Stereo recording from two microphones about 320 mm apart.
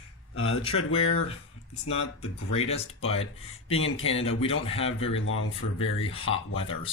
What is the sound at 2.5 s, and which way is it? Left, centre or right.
Speech, centre.